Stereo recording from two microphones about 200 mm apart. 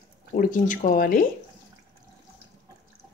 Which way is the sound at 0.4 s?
40° left (ahead or behind).